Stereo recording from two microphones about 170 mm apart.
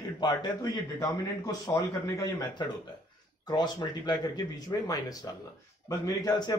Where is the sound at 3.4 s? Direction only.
25° left (ahead or behind).